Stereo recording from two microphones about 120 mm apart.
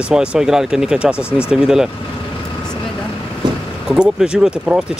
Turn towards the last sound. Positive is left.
turn(degrees=-5)  # may be behind; listen again after turning